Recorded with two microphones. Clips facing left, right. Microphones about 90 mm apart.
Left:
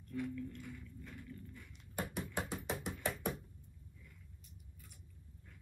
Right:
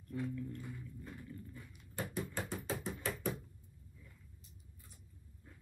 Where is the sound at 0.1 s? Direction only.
25° right (ahead or behind).